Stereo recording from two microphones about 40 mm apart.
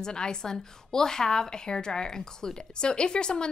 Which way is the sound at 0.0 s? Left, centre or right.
Centre.